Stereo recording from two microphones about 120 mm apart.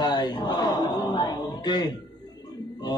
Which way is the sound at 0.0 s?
35° left (ahead or behind).